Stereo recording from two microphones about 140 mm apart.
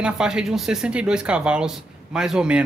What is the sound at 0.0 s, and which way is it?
Speech, 5° right (ahead or behind).